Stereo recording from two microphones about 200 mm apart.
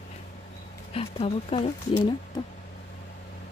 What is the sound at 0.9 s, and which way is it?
Speech, 30° left (ahead or behind).